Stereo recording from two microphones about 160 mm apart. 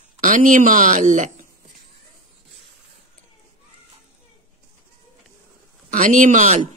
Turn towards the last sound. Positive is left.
turn(degrees=-50)  # may be behind; listen again after turning